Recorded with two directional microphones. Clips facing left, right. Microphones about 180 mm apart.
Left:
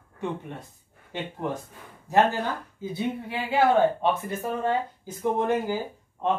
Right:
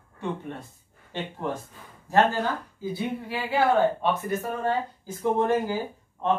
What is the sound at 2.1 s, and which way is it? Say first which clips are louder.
Speech: even; 20° left (ahead or behind).